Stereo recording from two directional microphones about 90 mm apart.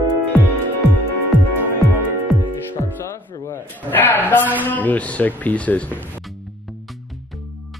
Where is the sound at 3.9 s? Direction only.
20° left (ahead or behind).